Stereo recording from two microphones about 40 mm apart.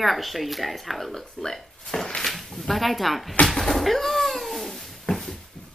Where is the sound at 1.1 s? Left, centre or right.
Centre.